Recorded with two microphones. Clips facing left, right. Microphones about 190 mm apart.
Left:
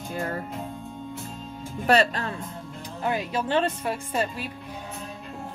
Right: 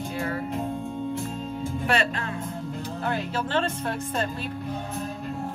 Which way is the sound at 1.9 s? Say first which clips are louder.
Left 6 dB; 35° left (ahead or behind).